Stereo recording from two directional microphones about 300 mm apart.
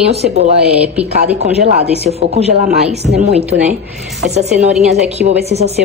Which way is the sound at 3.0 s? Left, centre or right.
Right.